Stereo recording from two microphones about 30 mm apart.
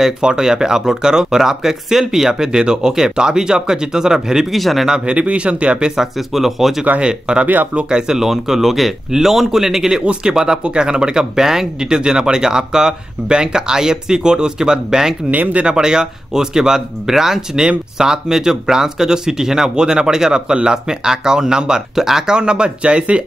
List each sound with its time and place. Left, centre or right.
0.2 s speech: right
4.5 s speech: centre
5.0 s speech: right
5.9 s speech: centre
7.0 s speech: right
8.2 s speech: centre
15.3 s speech: right
15.6 s speech: right